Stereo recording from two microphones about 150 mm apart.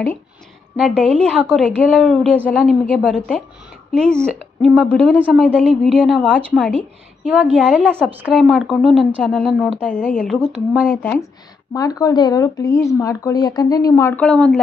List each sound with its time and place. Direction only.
0.7 s a woman's voice: centre (ahead or behind)
5.6 s a woman's voice: 5° left (ahead or behind)
5.9 s a woman's voice: 10° right (ahead or behind)
6.2 s a woman's voice: 5° left (ahead or behind)
7.5 s a woman's voice: 10° right (ahead or behind)
8.4 s a woman's voice: centre (ahead or behind)
9.5 s a woman's voice: 5° right (ahead or behind); by 11.2 s 10° left (ahead or behind)
11.7 s speech: 25° left (ahead or behind)
14.1 s a woman's voice: 5° left (ahead or behind)